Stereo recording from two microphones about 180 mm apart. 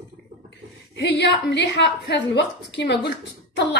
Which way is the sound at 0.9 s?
70° left (ahead or behind).